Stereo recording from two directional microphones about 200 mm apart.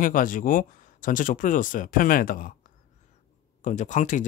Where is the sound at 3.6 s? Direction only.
40° left (ahead or behind).